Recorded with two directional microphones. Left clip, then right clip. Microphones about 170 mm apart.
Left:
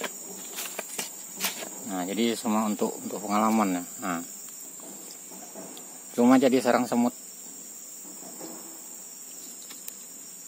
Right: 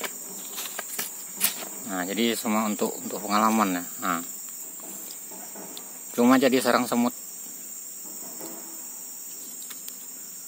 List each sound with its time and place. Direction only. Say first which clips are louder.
0.7 s cricket: right 1 dB; 20° left (ahead or behind)
1.9 s speech: right 2 dB; 5° left (ahead or behind)
6.1 s speech: right 1 dB; 5° left (ahead or behind)